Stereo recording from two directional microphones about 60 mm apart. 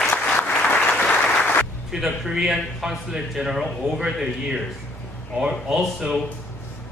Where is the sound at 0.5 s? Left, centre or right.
Left.